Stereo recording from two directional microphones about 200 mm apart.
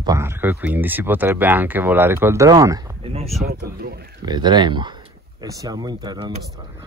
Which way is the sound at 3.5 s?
50° right (ahead or behind).